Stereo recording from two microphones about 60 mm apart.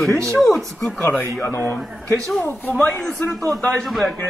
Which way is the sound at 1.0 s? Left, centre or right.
Left.